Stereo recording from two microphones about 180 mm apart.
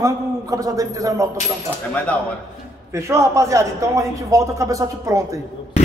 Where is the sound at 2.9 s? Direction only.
15° right (ahead or behind).